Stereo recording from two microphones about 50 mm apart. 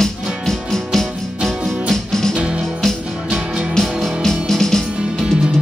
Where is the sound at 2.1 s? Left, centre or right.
Centre.